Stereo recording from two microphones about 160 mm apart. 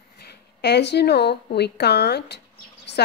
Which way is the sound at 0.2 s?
90° left.